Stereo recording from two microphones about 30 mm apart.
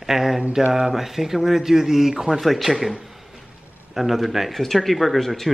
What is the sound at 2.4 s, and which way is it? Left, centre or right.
Speech, centre.